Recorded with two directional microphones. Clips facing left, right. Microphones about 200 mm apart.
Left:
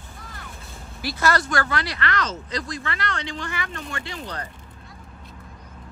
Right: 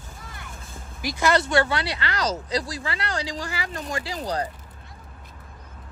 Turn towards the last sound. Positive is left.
turn(degrees=-35)  # may be behind; listen again after turning